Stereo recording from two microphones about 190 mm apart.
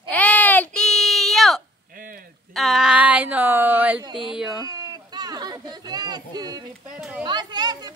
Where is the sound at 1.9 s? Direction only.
50° right (ahead or behind).